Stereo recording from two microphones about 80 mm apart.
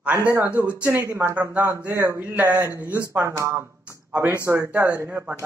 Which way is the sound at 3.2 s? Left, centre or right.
Right.